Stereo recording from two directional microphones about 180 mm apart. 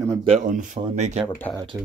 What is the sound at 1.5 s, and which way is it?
Speech, 20° right (ahead or behind).